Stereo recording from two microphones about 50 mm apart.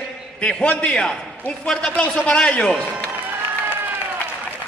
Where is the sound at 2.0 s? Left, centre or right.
Left.